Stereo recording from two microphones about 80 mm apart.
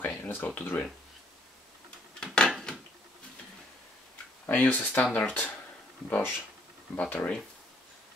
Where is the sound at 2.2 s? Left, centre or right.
Centre.